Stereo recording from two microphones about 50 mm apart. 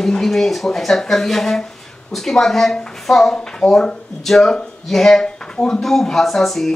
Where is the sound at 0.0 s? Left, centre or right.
Centre.